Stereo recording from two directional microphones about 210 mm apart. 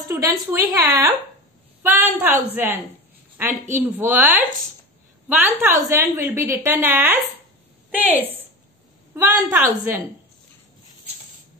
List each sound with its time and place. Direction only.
0.0 s a woman's voice: 15° right (ahead or behind)
3.8 s a woman's voice: 10° right (ahead or behind)